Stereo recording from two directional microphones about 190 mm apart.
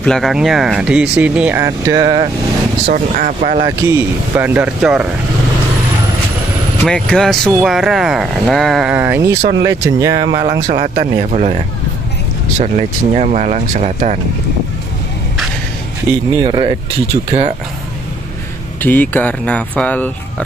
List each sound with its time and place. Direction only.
0.0 s speech: centre (ahead or behind); by 2.2 s 20° right (ahead or behind)
2.9 s speech: 45° right (ahead or behind)
3.8 s speech: 10° right (ahead or behind)
6.8 s speech: 5° left (ahead or behind); by 9.4 s 10° right (ahead or behind)
9.4 s speech: 65° right (ahead or behind)
9.7 s speech: 15° right (ahead or behind)
10.7 s speech: 40° right (ahead or behind)
12.5 s speech: 35° right (ahead or behind)
16.3 s speech: 25° right (ahead or behind)
18.8 s speech: 10° left (ahead or behind)